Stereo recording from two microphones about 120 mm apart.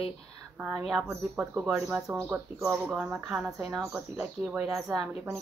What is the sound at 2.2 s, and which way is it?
Speech, 20° right (ahead or behind).